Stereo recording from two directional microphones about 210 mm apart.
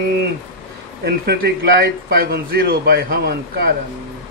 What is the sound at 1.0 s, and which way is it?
A man's voice, 50° right (ahead or behind).